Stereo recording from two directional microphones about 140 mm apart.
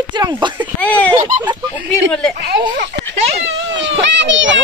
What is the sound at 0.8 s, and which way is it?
Giggle, 10° left (ahead or behind).